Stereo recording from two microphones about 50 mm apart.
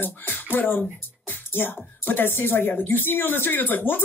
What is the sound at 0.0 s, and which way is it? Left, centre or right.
Speech, left.